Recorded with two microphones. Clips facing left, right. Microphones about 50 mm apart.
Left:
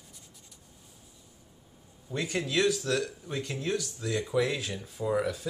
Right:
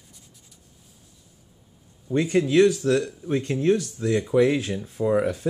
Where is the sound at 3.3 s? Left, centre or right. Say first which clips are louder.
Right 11 dB; right.